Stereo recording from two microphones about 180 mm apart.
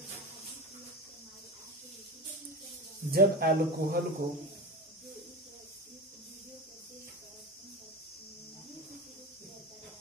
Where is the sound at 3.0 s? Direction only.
55° right (ahead or behind).